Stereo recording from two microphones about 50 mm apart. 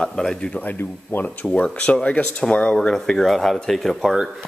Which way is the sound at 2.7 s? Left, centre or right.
Centre.